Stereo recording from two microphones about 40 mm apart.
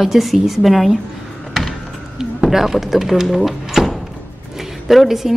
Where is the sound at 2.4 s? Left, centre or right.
Centre.